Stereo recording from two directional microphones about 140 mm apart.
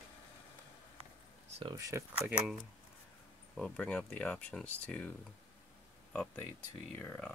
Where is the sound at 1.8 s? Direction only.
20° right (ahead or behind).